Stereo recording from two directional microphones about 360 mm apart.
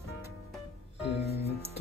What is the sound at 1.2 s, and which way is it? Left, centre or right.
Music, centre.